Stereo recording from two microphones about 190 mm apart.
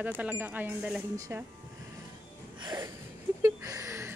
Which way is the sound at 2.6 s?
20° right (ahead or behind).